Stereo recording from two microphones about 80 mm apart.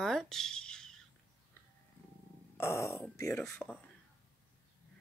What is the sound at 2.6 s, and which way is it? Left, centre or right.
Speech, left.